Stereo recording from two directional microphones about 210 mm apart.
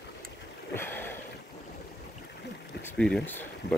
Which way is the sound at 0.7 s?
10° left (ahead or behind).